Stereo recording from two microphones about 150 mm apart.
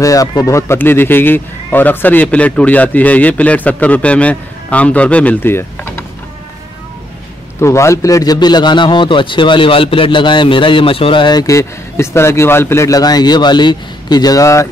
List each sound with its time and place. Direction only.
0.0 s speech: 25° left (ahead or behind)
7.6 s a man's voice: 20° left (ahead or behind)